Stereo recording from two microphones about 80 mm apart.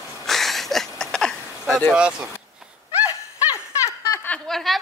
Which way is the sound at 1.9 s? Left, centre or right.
Centre.